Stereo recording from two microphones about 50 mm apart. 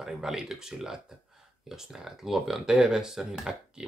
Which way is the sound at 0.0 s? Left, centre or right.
Centre.